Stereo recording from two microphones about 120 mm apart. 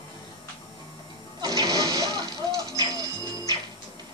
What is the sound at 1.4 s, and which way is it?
Toilet flush, 30° right (ahead or behind).